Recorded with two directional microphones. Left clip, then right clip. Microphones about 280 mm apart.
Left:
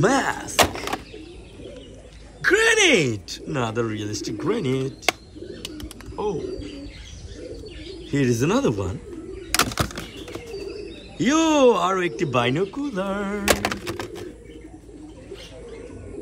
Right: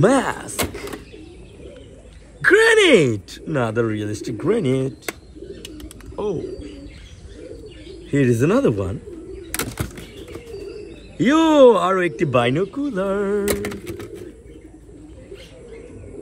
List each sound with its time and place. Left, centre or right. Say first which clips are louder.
0.0 s door: right 3 dB; centre
2.4 s a man's voice: right 4 dB; centre
5.6 s bird: left 1 dB; centre
8.1 s a man's voice: right 4 dB; centre
9.8 s a sound: left 5 dB; left
11.1 s a man's voice: right 5 dB; centre